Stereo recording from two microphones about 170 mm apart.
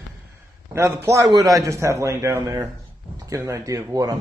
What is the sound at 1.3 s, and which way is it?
A man's voice, 20° right (ahead or behind).